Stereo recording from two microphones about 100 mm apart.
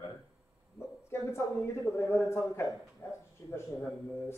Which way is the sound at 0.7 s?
25° left (ahead or behind).